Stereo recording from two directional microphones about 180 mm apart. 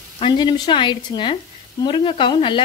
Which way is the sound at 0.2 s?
25° left (ahead or behind).